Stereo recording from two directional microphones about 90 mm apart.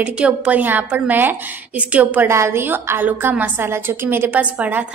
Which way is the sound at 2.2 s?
30° right (ahead or behind).